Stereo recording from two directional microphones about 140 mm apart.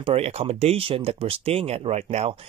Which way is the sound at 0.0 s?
45° right (ahead or behind).